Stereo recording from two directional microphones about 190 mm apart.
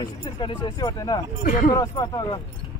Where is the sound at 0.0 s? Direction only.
25° left (ahead or behind).